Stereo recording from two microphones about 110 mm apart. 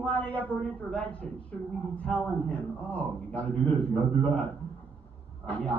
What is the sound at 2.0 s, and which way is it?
A man's voice, 10° left (ahead or behind).